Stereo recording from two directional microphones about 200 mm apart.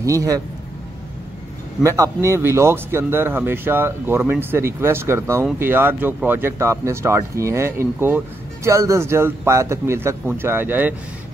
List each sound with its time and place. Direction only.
0.0 s speech: 15° right (ahead or behind)
1.8 s speech: 15° right (ahead or behind)